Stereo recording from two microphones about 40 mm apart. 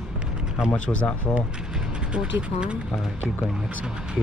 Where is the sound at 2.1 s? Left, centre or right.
Right.